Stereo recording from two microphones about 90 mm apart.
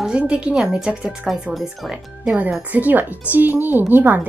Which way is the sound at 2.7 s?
20° right (ahead or behind).